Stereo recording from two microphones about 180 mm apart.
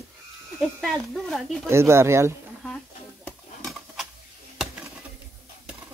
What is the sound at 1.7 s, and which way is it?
Speech, 15° right (ahead or behind).